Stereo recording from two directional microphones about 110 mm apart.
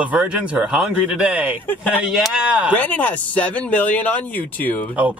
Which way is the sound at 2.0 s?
5° right (ahead or behind).